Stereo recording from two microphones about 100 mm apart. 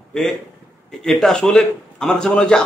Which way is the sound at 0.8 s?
5° left (ahead or behind).